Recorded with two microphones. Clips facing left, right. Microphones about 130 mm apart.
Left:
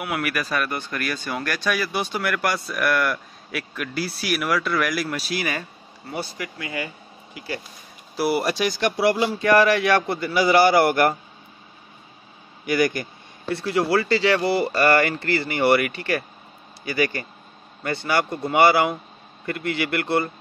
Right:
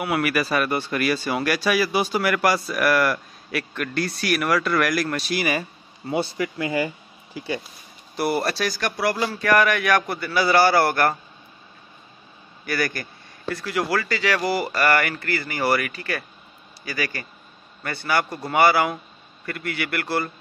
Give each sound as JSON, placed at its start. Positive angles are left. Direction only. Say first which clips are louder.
{"t": 0.0, "sound": "speech", "louder": "right 4 dB", "side_deg": 0}
{"t": 6.0, "sound": "speech", "louder": "right 6 dB", "side_deg": -25}
{"t": 8.2, "sound": "speech", "louder": "left 1 dB", "side_deg": 10}
{"t": 12.6, "sound": "speech", "louder": "left 5 dB", "side_deg": 20}